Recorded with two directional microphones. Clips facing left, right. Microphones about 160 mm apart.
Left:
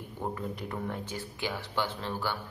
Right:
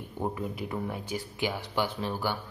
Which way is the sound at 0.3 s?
10° right (ahead or behind).